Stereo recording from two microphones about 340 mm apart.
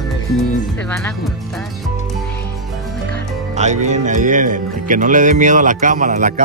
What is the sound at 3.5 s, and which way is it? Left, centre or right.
Speech, centre.